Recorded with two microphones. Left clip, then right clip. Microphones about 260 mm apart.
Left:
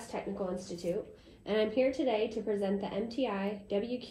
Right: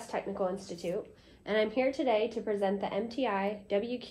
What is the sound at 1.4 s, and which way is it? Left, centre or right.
Speech, centre.